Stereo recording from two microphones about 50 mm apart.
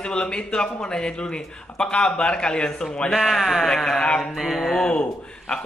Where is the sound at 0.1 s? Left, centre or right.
Centre.